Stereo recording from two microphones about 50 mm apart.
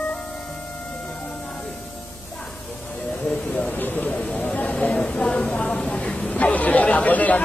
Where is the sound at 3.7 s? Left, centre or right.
Left; by 6.2 s centre.